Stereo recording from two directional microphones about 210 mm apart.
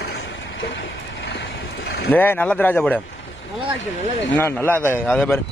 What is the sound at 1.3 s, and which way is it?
Boat, 50° left (ahead or behind).